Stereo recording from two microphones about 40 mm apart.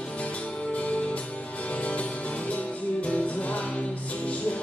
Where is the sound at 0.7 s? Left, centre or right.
Left.